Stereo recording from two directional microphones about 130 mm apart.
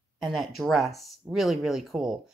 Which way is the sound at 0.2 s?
Centre (ahead or behind).